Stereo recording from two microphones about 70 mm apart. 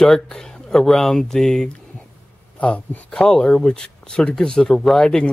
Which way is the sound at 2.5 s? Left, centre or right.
Centre.